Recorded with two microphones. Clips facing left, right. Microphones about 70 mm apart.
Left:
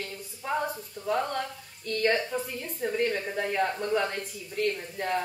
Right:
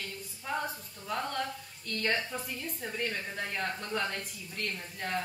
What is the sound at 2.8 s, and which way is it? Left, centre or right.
A woman's voice, centre.